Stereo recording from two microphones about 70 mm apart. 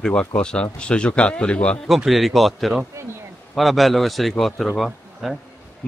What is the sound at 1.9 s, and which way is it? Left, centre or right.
A man's voice, centre.